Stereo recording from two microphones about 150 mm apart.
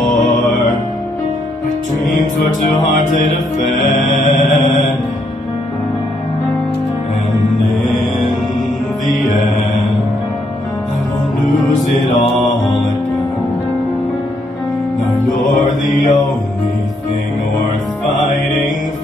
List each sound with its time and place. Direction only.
3.6 s music: centre (ahead or behind)
12.4 s mantra: centre (ahead or behind)
15.9 s mantra: 60° left (ahead or behind)